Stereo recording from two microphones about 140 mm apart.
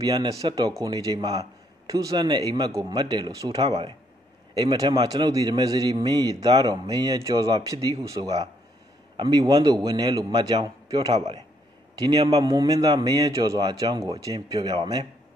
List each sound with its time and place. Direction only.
0.1 s a man's voice: 30° right (ahead or behind)
9.1 s a man's voice: 35° right (ahead or behind)